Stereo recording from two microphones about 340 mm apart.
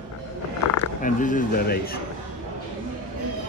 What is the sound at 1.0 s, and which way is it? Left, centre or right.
Speech, left.